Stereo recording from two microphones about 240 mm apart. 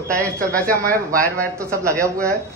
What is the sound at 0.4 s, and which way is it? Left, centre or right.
Speech, right.